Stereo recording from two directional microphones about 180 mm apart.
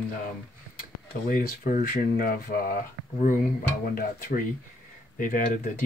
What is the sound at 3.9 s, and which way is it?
Speech, 55° left (ahead or behind).